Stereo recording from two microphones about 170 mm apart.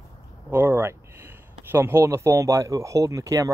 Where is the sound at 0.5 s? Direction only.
15° right (ahead or behind).